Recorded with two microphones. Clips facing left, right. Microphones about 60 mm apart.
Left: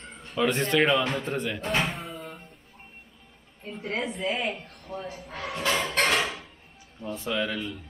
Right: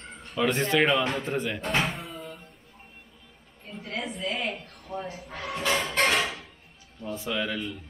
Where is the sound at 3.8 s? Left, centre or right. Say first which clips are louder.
Left 3 dB; left.